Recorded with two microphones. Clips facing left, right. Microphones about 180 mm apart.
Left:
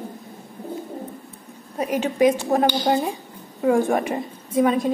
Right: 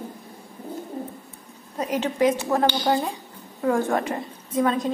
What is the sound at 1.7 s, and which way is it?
A woman's voice, 10° left (ahead or behind).